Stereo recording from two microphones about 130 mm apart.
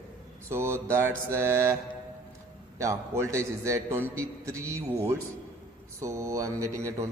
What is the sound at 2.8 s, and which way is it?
A man's voice, 20° right (ahead or behind).